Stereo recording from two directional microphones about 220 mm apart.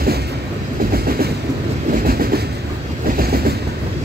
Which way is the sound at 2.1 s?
45° right (ahead or behind).